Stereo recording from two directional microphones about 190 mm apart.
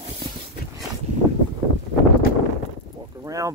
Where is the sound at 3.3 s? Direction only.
15° right (ahead or behind).